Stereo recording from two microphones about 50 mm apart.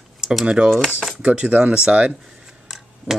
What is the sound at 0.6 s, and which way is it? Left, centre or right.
Speech, right.